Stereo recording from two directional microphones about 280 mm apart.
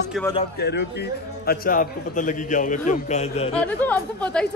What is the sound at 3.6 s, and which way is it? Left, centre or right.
Speech, centre.